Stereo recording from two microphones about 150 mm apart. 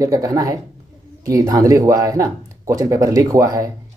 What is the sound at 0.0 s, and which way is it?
Speech, 25° right (ahead or behind).